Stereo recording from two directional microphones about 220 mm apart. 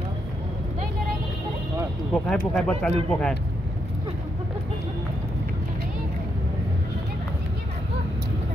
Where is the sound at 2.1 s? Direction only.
5° left (ahead or behind).